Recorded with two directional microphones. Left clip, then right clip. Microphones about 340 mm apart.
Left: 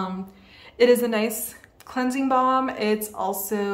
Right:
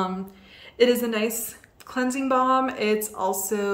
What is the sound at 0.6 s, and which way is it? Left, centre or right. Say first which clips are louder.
A woman's voice: left 2 dB; centre.